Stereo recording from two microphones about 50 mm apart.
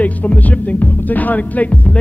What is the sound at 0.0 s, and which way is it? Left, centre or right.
Speech, left.